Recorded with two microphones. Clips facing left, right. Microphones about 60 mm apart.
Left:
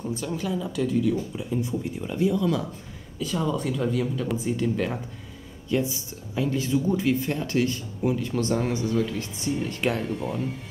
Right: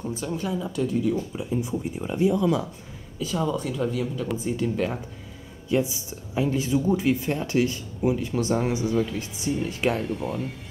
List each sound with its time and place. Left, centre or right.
0.2 s speech: centre
1.6 s speech: centre
5.7 s speech: centre